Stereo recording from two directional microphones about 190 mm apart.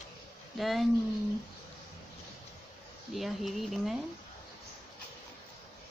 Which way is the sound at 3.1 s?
Centre (ahead or behind).